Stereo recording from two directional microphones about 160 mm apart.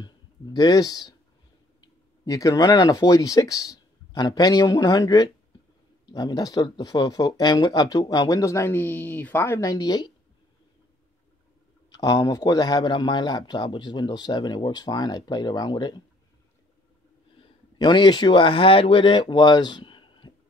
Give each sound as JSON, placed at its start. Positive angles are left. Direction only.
{"t": 0.0, "sound": "a man's voice", "side_deg": 25}
{"t": 11.9, "sound": "a man's voice", "side_deg": 25}
{"t": 17.7, "sound": "a man's voice", "side_deg": 30}